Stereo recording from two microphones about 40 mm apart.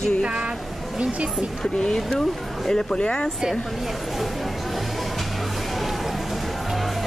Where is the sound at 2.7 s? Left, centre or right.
Centre.